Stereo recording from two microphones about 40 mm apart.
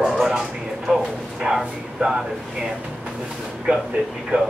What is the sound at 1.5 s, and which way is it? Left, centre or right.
Speech, centre.